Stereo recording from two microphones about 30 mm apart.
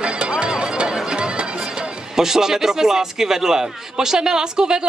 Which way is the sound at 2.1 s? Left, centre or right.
Centre.